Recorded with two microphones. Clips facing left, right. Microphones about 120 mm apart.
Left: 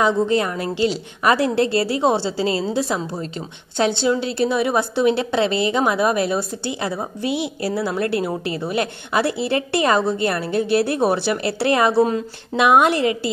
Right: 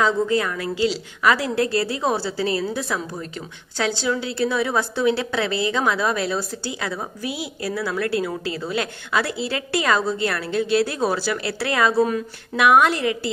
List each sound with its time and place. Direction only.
0.0 s a woman's voice: 25° left (ahead or behind)